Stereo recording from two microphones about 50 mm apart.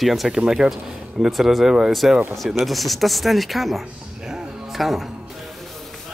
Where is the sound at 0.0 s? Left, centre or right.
Centre.